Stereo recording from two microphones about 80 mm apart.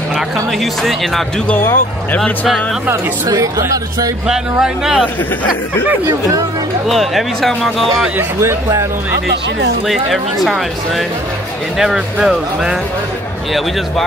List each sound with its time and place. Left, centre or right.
1.5 s speech: left
3.3 s speech: right
4.3 s speech: centre
6.9 s speech: centre
8.2 s speech: right
9.8 s speech: centre
11.8 s speech: centre